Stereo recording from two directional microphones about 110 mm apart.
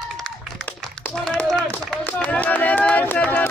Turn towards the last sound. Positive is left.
turn(degrees=15)  # may be behind; listen again after turning